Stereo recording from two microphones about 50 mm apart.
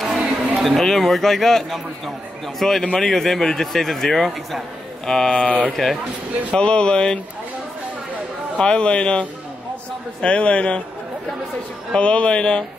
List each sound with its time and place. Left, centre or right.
0.6 s a man's voice: centre
5.0 s a man's voice: centre
5.7 s speech: centre
6.5 s a man's voice: centre
8.5 s a man's voice: centre
11.9 s a man's voice: left